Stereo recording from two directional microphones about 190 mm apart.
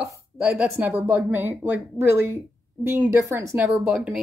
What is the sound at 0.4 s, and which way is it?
A woman's voice, 5° right (ahead or behind).